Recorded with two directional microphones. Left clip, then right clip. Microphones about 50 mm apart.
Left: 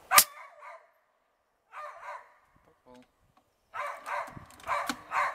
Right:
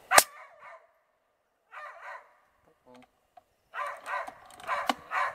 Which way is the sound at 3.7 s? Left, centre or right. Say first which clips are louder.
Right 1 dB; right.